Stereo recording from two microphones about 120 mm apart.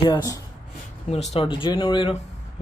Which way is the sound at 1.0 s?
65° left (ahead or behind).